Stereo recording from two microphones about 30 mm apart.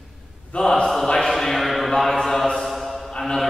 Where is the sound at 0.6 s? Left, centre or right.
Left.